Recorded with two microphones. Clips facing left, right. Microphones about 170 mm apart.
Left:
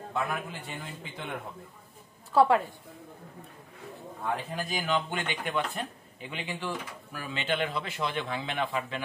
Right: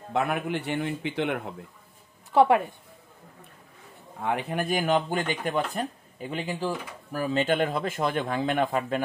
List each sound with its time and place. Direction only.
0.1 s a man's voice: 75° right (ahead or behind)
2.3 s a woman's voice: 20° right (ahead or behind)
4.2 s speech: 70° right (ahead or behind); by 9.0 s 45° right (ahead or behind)